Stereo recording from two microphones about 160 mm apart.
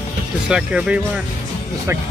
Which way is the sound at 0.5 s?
5° right (ahead or behind).